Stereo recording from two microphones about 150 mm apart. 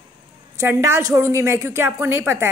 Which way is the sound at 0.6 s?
15° right (ahead or behind).